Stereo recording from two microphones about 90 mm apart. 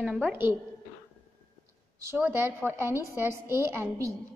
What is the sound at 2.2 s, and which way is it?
A woman's voice, 25° right (ahead or behind).